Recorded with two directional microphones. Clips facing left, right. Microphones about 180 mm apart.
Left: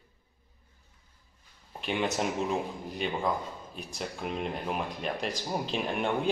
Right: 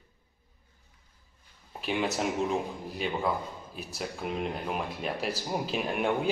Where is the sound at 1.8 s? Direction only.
Centre (ahead or behind).